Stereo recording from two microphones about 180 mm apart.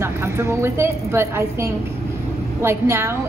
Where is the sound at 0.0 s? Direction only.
15° right (ahead or behind).